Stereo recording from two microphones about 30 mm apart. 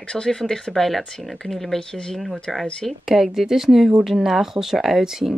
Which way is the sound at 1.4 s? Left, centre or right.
Centre.